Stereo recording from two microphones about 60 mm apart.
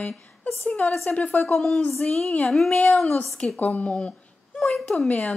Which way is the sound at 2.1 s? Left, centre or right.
Centre.